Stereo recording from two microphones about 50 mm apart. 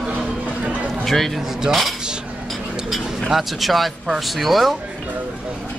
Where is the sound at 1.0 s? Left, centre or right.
Centre.